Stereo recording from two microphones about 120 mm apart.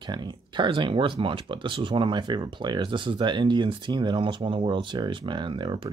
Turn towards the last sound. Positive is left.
turn(degrees=-40)  # may be behind; listen again after turning